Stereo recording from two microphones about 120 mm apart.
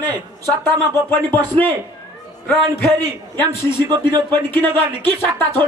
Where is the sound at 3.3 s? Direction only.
40° right (ahead or behind).